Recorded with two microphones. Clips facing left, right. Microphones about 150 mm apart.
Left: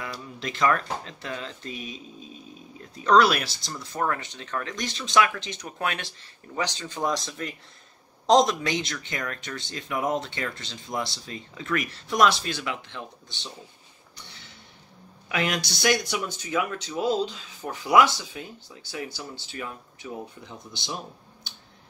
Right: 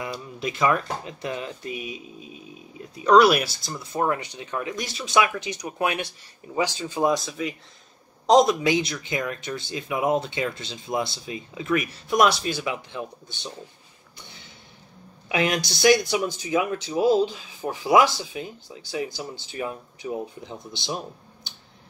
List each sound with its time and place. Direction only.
0.0 s speech: 15° right (ahead or behind)
15.2 s speech: 20° right (ahead or behind)